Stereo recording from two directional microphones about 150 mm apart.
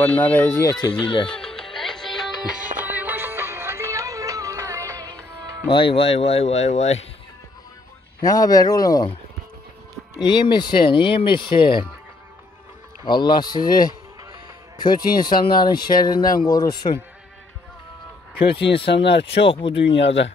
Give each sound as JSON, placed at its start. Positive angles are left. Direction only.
{"t": 0.0, "sound": "speech", "side_deg": 10}
{"t": 1.0, "sound": "speech", "side_deg": 35}
{"t": 1.3, "sound": "music", "side_deg": 5}
{"t": 5.7, "sound": "speech", "side_deg": 35}
{"t": 8.2, "sound": "speech", "side_deg": 25}
{"t": 10.1, "sound": "speech", "side_deg": 30}
{"t": 13.0, "sound": "speech", "side_deg": 30}
{"t": 14.8, "sound": "speech", "side_deg": 30}
{"t": 18.7, "sound": "speech", "side_deg": 35}